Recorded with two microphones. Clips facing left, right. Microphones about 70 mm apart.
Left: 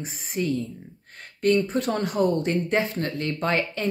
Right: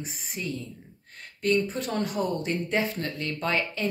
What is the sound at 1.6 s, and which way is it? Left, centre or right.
Speech, left.